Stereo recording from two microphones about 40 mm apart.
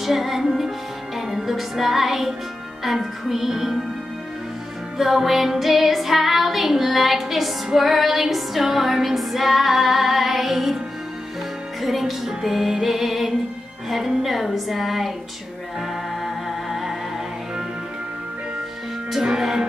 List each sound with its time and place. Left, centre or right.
0.0 s music: centre
4.9 s music: centre
11.8 s music: centre
19.2 s music: centre